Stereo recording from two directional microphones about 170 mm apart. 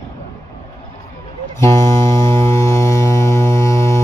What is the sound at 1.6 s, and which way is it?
Music, 15° left (ahead or behind).